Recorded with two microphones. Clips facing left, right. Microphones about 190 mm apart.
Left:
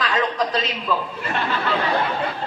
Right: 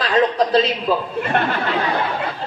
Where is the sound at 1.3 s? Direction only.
55° right (ahead or behind).